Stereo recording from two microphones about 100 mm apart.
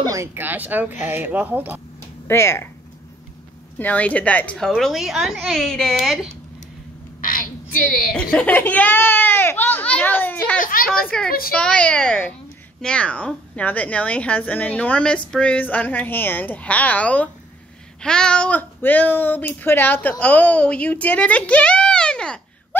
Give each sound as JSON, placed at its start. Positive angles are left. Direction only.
{"t": 0.1, "sound": "speech", "side_deg": -25}
{"t": 2.2, "sound": "speech", "side_deg": 25}
{"t": 3.7, "sound": "a woman's voice", "side_deg": 15}
{"t": 8.4, "sound": "speech", "side_deg": 15}